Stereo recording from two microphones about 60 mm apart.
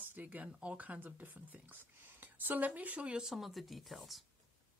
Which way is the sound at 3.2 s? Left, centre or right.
Centre.